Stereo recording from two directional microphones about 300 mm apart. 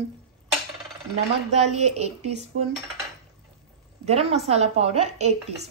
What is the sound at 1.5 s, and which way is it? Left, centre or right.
Speech, right.